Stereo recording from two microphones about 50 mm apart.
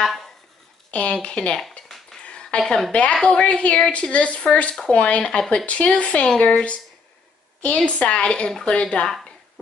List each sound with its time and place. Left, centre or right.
0.9 s a woman's voice: left
1.6 s a sound: centre
2.2 s a sound: left
2.6 s a woman's voice: centre
2.9 s a woman's voice: left
9.0 s speech: centre